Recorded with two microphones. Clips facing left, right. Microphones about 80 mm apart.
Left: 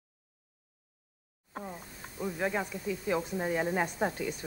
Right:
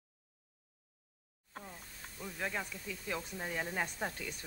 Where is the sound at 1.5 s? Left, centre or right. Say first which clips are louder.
Left 8 dB; left.